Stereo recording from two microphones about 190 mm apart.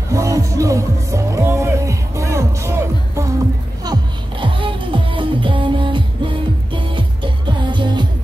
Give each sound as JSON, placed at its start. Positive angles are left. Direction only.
{"t": 0.1, "sound": "music", "side_deg": -15}